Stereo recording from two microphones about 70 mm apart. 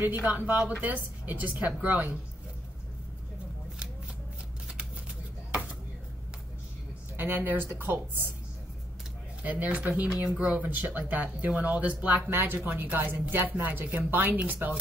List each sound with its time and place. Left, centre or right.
0.0 s speech: right
7.2 s speech: right
9.4 s speech: right